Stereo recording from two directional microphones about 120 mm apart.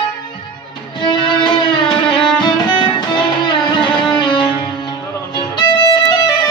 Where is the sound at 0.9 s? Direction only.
40° left (ahead or behind).